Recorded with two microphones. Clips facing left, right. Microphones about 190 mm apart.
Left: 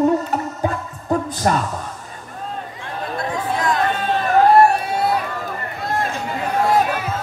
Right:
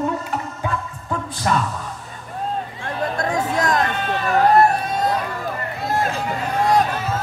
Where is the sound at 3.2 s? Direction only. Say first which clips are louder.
Even; 45° right (ahead or behind).